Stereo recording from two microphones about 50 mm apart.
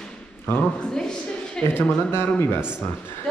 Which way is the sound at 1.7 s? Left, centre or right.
Left.